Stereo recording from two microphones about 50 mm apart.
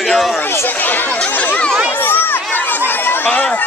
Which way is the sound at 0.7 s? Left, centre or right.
Left.